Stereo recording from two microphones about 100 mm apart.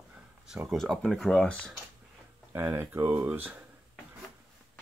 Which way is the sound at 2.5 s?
25° right (ahead or behind).